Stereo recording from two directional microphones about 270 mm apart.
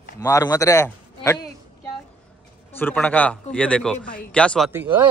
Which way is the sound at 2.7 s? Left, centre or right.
Centre.